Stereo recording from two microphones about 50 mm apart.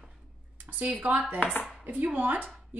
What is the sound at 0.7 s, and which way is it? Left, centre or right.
Speech, right.